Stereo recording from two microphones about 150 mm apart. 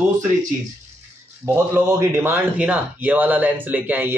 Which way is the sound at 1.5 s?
15° right (ahead or behind).